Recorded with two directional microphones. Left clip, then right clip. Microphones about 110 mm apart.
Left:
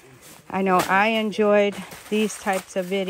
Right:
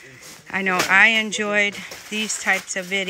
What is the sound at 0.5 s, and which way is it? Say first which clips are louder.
Speech: right 1 dB; 25° left (ahead or behind).